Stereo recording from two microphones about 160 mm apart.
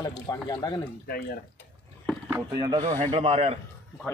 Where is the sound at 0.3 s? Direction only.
25° left (ahead or behind).